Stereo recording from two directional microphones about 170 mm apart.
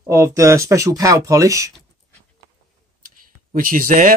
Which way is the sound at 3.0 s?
55° right (ahead or behind).